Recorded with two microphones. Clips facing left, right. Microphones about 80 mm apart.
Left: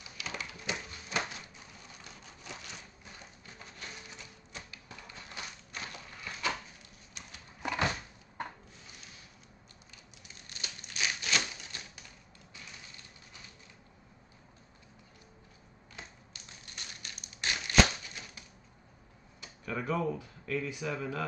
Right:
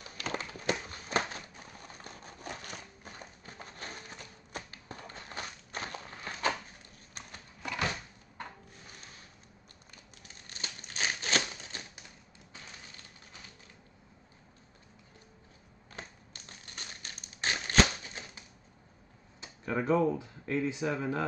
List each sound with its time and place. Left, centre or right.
0.0 s a sound: right
7.6 s cupboard open or close: left
10.2 s crumpling: right
16.0 s crumpling: right
19.4 s tick-tock: right
20.0 s speech: right